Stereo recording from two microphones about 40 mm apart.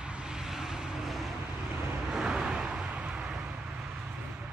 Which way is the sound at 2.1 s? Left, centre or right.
Centre.